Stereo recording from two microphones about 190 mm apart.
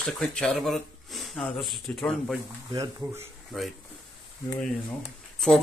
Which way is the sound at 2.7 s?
20° right (ahead or behind).